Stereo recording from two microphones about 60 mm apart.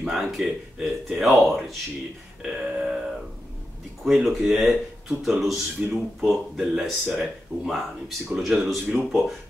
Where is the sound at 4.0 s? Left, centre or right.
Centre.